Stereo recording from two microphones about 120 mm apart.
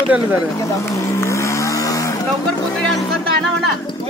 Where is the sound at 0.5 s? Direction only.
25° left (ahead or behind).